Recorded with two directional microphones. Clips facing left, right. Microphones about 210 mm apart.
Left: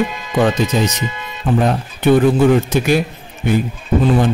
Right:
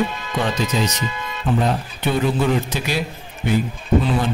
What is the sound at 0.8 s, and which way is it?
A man's voice, 50° left (ahead or behind).